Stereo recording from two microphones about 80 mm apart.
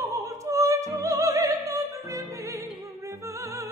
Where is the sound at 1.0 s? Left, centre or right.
Right.